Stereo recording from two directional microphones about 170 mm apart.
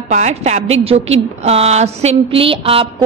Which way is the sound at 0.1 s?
40° right (ahead or behind).